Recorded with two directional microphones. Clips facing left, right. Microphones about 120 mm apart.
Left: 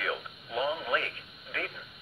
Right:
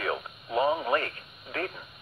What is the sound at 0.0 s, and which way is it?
Radio, 45° right (ahead or behind).